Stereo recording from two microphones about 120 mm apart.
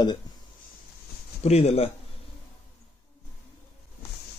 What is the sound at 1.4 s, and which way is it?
Speech, 60° left (ahead or behind).